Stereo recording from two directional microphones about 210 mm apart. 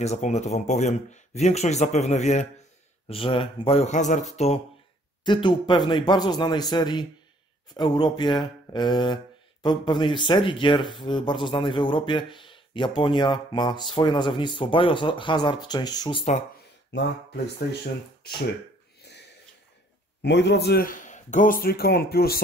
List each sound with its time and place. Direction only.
0.0 s speech: 30° left (ahead or behind)
16.9 s speech: 55° left (ahead or behind)
19.0 s a sound: 55° left (ahead or behind)
20.2 s speech: 55° left (ahead or behind)